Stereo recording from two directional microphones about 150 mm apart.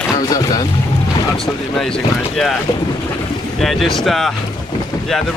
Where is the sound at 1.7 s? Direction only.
5° left (ahead or behind).